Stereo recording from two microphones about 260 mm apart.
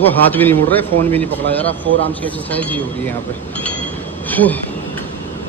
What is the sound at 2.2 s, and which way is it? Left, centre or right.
Speech, centre.